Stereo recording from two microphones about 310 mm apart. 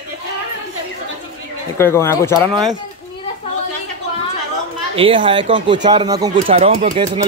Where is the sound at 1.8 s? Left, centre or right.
Centre.